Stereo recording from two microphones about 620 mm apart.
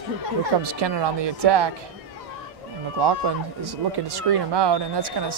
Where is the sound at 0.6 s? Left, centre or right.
Right.